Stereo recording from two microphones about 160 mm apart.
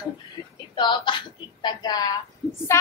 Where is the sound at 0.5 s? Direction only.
30° left (ahead or behind).